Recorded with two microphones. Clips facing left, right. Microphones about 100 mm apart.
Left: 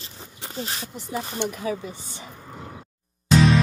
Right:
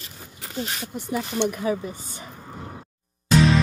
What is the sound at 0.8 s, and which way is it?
Speech, 50° right (ahead or behind).